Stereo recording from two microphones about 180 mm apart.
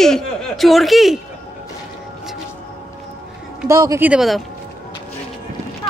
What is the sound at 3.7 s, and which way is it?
Speech, 15° right (ahead or behind).